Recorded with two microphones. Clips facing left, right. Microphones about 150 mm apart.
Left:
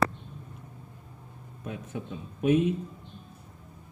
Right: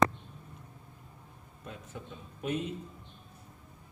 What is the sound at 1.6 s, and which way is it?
A man's voice, 60° left (ahead or behind).